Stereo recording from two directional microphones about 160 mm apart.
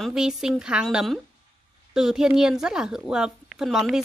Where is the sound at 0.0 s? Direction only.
5° right (ahead or behind).